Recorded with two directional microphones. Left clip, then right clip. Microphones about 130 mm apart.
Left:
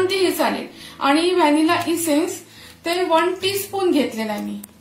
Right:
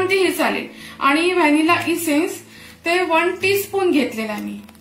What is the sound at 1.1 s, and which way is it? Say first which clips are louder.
A woman's voice: left 1 dB; 65° left (ahead or behind).